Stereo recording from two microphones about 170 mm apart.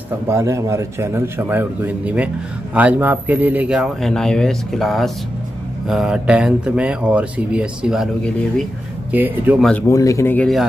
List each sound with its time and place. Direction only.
0.3 s a man's voice: 15° right (ahead or behind); by 8.6 s 5° left (ahead or behind)
9.1 s a man's voice: 10° right (ahead or behind)
9.6 s speech: 5° left (ahead or behind)
9.8 s a man's voice: 20° left (ahead or behind)